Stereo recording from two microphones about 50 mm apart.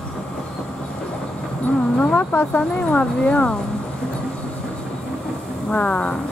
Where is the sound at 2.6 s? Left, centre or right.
Left.